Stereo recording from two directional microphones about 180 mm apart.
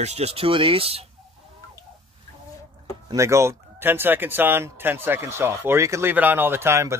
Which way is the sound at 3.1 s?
15° right (ahead or behind).